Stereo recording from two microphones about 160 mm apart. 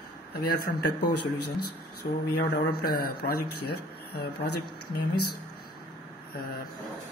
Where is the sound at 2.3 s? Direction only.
85° left.